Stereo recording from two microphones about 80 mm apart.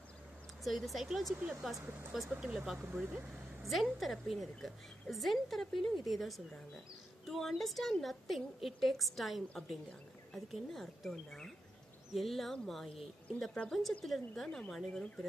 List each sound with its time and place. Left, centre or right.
0.7 s a woman's voice: centre
1.3 s speech: centre
2.9 s speech: right
3.6 s a woman's voice: centre